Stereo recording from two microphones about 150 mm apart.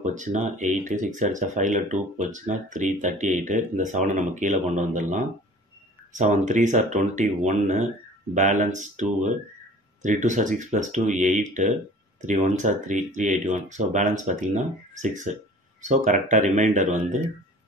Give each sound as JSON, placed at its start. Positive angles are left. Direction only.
{"t": 0.0, "sound": "speech", "side_deg": -55}